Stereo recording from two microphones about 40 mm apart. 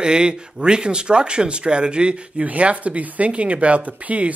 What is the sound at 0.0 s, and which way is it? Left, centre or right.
Speech, right.